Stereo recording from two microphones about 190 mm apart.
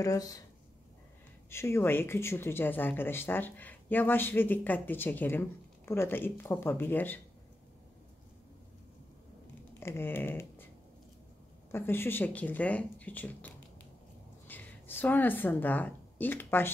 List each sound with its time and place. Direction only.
0.0 s speech: 20° left (ahead or behind)
1.5 s speech: 15° left (ahead or behind)
9.8 s speech: 10° left (ahead or behind)
11.7 s a woman's voice: 10° left (ahead or behind)